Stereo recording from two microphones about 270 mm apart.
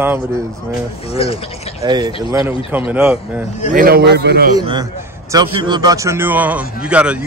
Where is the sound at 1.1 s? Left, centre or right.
Left.